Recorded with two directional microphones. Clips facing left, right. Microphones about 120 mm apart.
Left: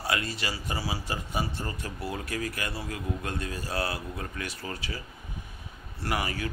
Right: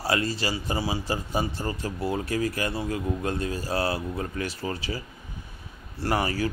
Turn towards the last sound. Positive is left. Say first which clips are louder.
# right 5 dB
turn(degrees=-35)  # may be behind; listen again after turning